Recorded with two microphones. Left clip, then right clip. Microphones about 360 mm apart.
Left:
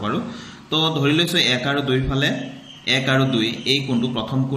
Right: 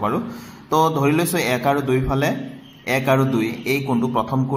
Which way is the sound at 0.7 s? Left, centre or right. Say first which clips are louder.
Right 2 dB; centre.